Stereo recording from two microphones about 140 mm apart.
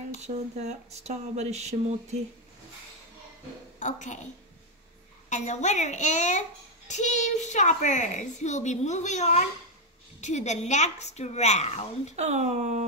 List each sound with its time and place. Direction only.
0.2 s speech: 50° right (ahead or behind)
3.8 s a child's voice: 60° left (ahead or behind)
5.3 s a child's voice: 55° left (ahead or behind)
12.2 s speech: 50° right (ahead or behind)